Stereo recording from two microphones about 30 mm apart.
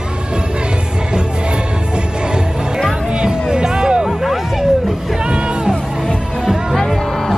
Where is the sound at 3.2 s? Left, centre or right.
Right.